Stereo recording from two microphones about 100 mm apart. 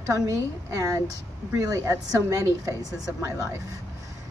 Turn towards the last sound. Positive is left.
turn(degrees=-35)  # may be behind; listen again after turning